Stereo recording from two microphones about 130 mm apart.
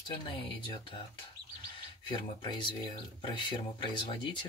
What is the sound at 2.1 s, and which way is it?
Speech, 35° left (ahead or behind).